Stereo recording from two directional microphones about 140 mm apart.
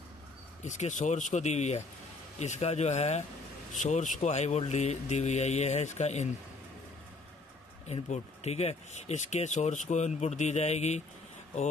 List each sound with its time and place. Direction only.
0.7 s speech: 60° left (ahead or behind)
7.9 s speech: 50° left (ahead or behind)